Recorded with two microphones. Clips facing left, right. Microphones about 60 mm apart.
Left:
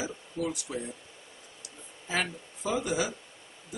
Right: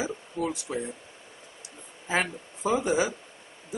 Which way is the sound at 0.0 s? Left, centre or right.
Right.